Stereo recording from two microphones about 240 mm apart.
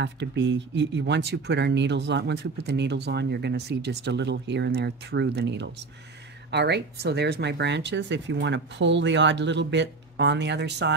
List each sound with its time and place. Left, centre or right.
0.0 s speech: right